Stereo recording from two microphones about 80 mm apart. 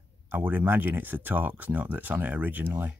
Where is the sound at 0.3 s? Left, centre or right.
Right.